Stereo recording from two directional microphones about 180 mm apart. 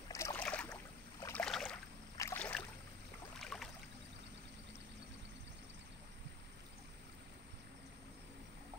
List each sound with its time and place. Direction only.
0.1 s boat: 15° left (ahead or behind)
1.2 s rowboat: 5° left (ahead or behind)
3.3 s boat: centre (ahead or behind)